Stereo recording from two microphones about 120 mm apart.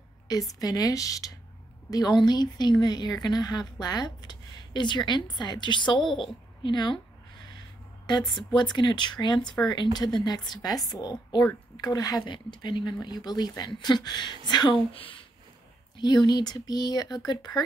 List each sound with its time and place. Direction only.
0.3 s speech: 30° left (ahead or behind)
5.9 s a woman's voice: centre (ahead or behind)
6.6 s speech: 40° left (ahead or behind)
8.1 s speech: 35° left (ahead or behind)